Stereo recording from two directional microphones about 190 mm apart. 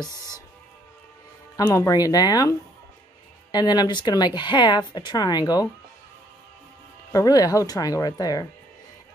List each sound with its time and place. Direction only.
1.6 s speech: 15° left (ahead or behind)
3.5 s speech: 20° left (ahead or behind)
7.1 s speech: 20° left (ahead or behind)